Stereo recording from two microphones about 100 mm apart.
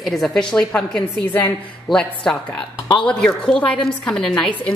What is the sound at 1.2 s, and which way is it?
Speech, 20° left (ahead or behind).